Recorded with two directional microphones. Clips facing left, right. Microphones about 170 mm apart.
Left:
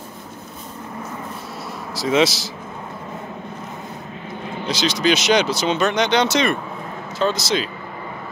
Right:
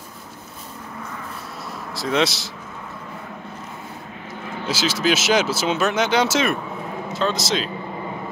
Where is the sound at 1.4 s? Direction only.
Centre (ahead or behind).